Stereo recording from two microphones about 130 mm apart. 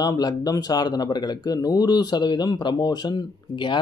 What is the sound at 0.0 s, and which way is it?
Speech, 30° left (ahead or behind).